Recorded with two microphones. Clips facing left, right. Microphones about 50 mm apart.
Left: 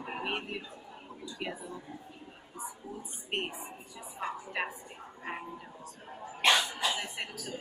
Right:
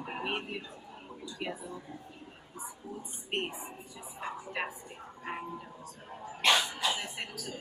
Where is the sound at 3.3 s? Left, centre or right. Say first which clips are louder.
Even; centre.